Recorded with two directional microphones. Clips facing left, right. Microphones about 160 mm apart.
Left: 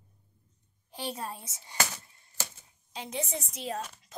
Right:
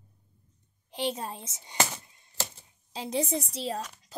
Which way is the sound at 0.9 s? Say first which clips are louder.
Right 5 dB; 20° right (ahead or behind).